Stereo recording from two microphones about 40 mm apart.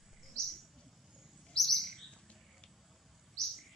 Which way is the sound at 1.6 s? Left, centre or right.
Centre.